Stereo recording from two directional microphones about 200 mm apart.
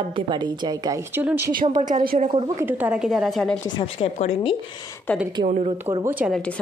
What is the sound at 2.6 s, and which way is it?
A woman's voice, 10° right (ahead or behind).